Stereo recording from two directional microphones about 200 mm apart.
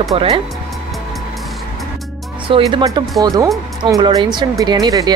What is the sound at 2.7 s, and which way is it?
Speech, 20° right (ahead or behind).